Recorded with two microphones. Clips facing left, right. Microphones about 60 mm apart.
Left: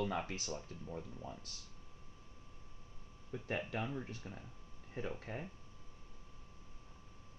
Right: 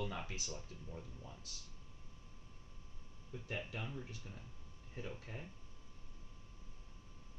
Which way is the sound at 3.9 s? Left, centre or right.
Left.